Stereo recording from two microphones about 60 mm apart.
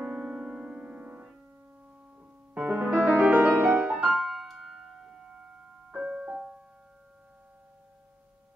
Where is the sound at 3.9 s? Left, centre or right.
Centre.